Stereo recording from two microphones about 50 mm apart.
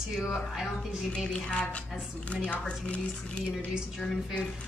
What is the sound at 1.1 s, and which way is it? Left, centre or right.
Speech, left.